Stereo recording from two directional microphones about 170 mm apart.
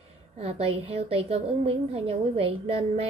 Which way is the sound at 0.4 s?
35° right (ahead or behind).